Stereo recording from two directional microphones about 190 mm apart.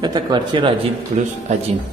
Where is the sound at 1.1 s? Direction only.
40° right (ahead or behind).